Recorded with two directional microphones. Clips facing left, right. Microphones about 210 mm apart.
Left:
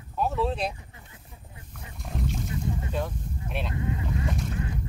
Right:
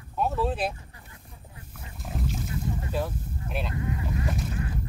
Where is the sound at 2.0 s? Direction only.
Centre (ahead or behind).